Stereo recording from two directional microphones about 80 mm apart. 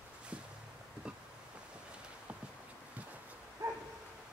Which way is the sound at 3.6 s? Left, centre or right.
Right.